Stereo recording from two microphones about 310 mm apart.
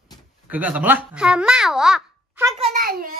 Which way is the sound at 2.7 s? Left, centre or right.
Right.